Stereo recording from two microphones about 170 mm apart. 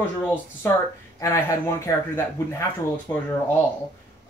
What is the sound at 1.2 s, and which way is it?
A man's voice, 15° left (ahead or behind).